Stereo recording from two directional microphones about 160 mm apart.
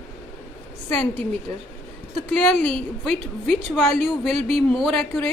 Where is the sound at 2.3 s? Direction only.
5° left (ahead or behind).